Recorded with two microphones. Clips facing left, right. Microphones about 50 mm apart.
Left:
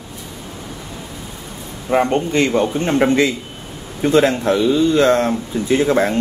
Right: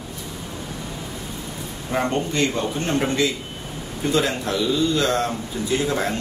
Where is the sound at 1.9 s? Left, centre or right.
Left.